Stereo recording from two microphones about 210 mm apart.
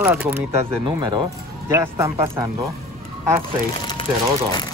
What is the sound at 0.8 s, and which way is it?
Speech, 20° right (ahead or behind).